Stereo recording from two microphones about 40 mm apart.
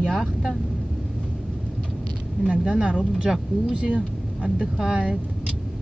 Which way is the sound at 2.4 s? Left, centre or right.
Right.